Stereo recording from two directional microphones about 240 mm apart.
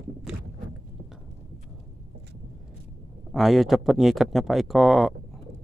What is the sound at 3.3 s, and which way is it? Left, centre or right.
Speech, centre.